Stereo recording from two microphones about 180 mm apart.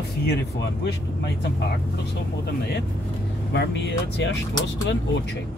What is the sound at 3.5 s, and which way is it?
Speech, 75° left (ahead or behind).